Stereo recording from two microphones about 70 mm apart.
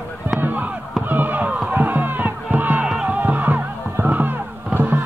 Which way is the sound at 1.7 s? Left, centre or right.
Right.